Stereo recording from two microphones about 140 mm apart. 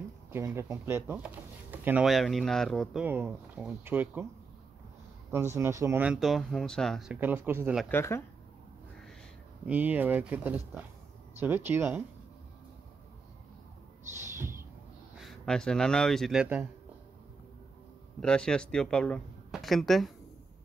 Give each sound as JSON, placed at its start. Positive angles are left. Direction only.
{"t": 0.3, "sound": "speech", "side_deg": -15}
{"t": 2.0, "sound": "speech", "side_deg": 0}
{"t": 3.0, "sound": "speech", "side_deg": -15}
{"t": 5.6, "sound": "speech", "side_deg": -20}
{"t": 6.0, "sound": "speech", "side_deg": 0}
{"t": 7.9, "sound": "speech", "side_deg": 20}
{"t": 9.7, "sound": "speech", "side_deg": -10}
{"t": 14.3, "sound": "a sound", "side_deg": -20}
{"t": 15.1, "sound": "speech", "side_deg": 0}
{"t": 18.2, "sound": "speech", "side_deg": 5}